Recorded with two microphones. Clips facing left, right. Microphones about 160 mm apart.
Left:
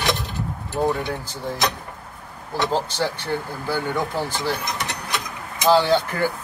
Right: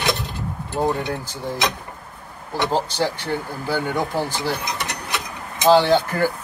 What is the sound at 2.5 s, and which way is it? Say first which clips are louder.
Speech: right 1 dB; 15° right (ahead or behind).